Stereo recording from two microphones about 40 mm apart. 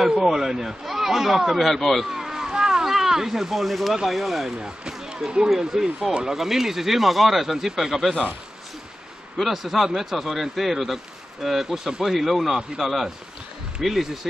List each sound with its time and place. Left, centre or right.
0.0 s speech: centre
2.0 s speech: centre
4.6 s speech: centre
9.4 s speech: centre